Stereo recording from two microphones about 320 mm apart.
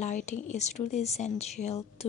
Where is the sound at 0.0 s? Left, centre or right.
Left.